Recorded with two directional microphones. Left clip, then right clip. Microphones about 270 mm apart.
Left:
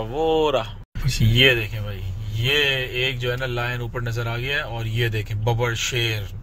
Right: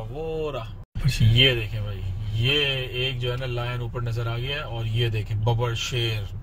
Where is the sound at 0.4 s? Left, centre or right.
Left.